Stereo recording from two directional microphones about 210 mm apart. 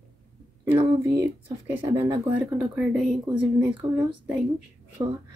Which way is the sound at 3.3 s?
20° right (ahead or behind).